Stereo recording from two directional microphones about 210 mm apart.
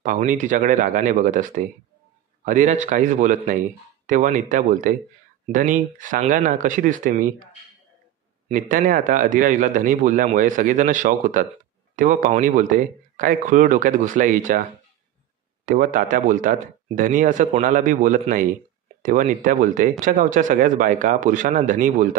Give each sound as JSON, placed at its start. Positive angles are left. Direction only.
{"t": 0.0, "sound": "speech", "side_deg": -40}
{"t": 8.5, "sound": "speech", "side_deg": -35}